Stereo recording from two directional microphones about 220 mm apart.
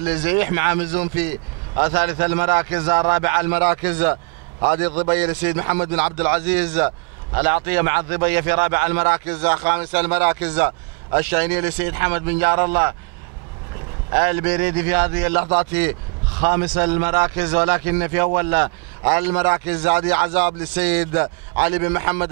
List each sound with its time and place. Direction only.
0.0 s a man's voice: 10° right (ahead or behind)
4.1 s a sound: 25° right (ahead or behind)
5.1 s a man's voice: 10° right (ahead or behind)
14.1 s a man's voice: 15° right (ahead or behind)